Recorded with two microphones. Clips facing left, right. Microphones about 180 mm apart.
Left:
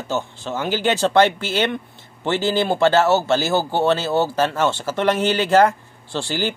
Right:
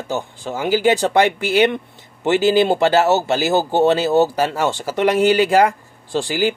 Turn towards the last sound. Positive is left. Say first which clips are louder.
# right 5 dB
turn(degrees=-15)  # may be behind; listen again after turning